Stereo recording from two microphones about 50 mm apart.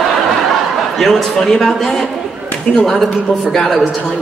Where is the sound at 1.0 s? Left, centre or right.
Centre.